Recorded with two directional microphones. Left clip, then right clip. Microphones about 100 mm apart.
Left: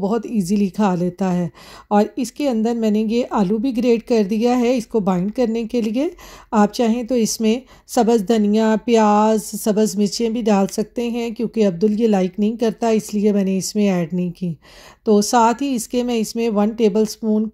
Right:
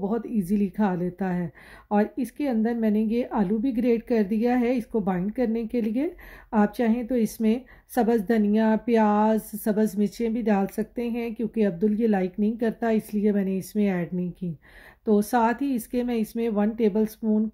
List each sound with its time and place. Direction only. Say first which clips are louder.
0.0 s a woman's voice: left 7 dB; 30° left (ahead or behind)